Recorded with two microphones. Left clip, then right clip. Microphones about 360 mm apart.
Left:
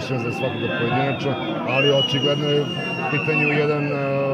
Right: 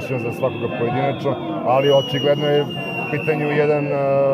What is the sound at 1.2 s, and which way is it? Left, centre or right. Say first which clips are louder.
A man's voice: right 3 dB; centre.